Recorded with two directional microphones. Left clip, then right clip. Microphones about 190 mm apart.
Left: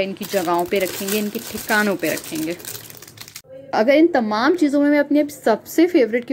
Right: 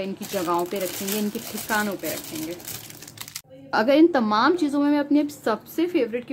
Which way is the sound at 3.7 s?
Centre (ahead or behind).